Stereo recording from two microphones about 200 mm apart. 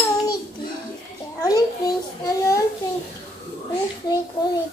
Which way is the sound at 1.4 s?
20° left (ahead or behind).